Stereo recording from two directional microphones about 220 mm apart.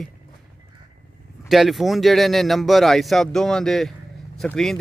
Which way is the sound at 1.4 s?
Centre (ahead or behind).